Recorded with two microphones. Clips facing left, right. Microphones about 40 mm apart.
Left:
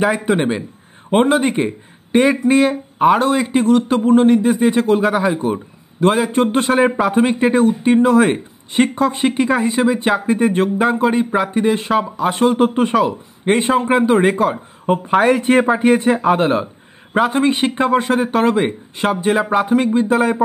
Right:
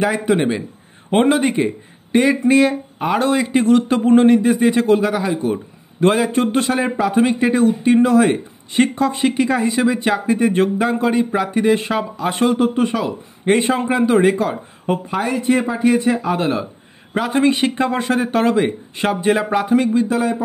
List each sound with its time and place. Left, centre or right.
0.0 s speech: centre
5.0 s speech: left
5.9 s speech: centre
11.5 s speech: centre
12.5 s speech: left
13.5 s speech: centre
13.8 s speech: left
15.0 s speech: left
17.3 s speech: centre
18.9 s speech: centre
19.8 s speech: left
20.1 s speech: left